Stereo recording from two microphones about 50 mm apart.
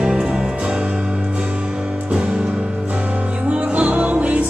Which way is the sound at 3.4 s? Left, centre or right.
Right.